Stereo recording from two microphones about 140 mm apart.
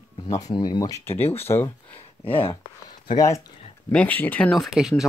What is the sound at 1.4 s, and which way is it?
Speech, 15° left (ahead or behind).